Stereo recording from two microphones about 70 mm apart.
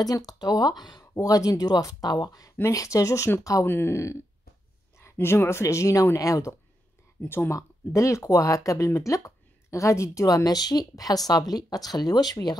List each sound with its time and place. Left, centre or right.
0.0 s speech: left
1.1 s speech: left
2.7 s speech: left
3.6 s speech: left
5.2 s speech: left
7.2 s speech: left
7.5 s speech: left
10.2 s speech: left